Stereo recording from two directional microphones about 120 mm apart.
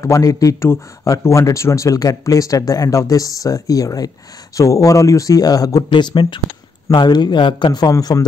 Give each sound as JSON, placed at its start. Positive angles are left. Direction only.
{"t": 0.0, "sound": "a man's voice", "side_deg": 25}